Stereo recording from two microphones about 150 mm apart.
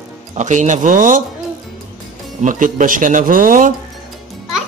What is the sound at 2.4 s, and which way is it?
Speech, 60° right (ahead or behind).